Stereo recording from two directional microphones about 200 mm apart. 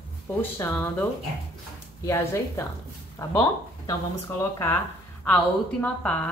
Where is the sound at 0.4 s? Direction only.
10° left (ahead or behind).